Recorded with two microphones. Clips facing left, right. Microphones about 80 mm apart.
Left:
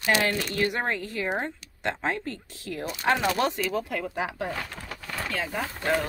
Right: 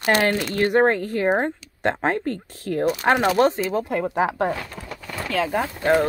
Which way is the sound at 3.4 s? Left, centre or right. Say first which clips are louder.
Right 7 dB; right.